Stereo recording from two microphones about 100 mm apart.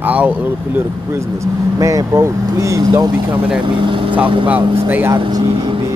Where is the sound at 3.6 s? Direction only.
55° right (ahead or behind).